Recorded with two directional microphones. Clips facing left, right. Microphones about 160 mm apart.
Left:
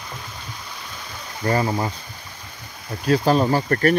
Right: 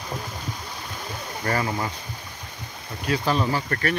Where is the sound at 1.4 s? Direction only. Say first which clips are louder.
Left 5 dB; 25° left (ahead or behind).